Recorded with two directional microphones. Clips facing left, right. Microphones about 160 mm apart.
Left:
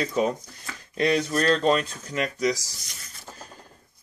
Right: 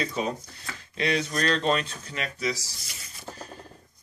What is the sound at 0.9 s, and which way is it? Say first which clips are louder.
Speech: left 4 dB; 45° left (ahead or behind).